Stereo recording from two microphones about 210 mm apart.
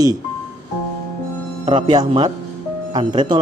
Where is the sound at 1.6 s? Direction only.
20° right (ahead or behind).